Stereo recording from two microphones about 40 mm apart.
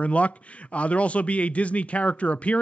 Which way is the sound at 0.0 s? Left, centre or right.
Left.